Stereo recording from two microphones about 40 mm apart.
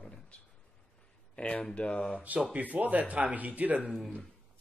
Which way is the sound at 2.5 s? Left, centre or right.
Right.